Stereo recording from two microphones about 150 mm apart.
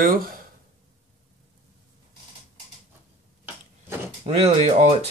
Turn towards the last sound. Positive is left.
turn(degrees=-50)  # may be behind; listen again after turning